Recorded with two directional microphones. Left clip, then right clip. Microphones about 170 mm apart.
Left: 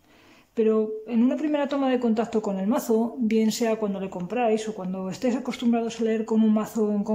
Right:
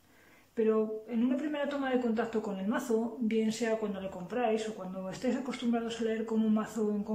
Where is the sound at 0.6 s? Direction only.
25° left (ahead or behind).